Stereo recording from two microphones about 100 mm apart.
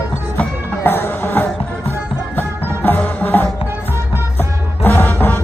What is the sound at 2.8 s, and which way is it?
Music, 15° left (ahead or behind).